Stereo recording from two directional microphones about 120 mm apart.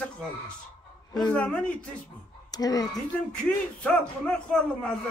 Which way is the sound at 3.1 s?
10° left (ahead or behind).